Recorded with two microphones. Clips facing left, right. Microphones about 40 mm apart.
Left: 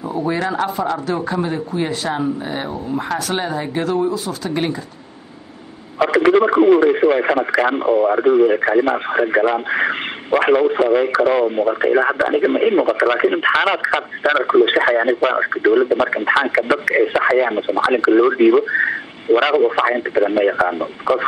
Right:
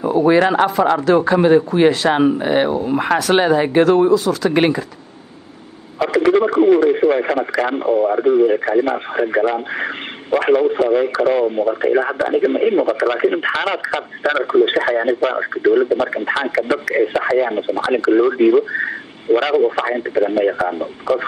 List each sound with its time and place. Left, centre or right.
0.0 s speech: right
0.7 s speech: right
5.9 s speech: left